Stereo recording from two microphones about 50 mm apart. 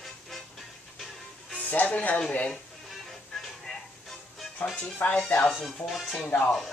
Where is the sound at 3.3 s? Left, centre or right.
Centre.